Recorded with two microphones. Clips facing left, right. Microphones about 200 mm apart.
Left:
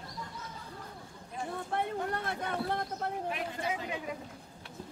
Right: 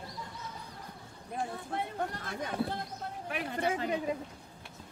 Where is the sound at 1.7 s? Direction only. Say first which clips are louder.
Left 3 dB; 60° left (ahead or behind).